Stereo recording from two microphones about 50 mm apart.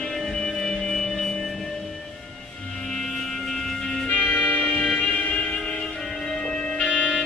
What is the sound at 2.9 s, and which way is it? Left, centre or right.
Music, centre.